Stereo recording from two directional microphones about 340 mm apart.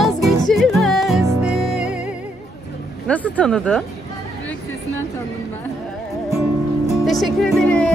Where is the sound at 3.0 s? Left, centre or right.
Centre.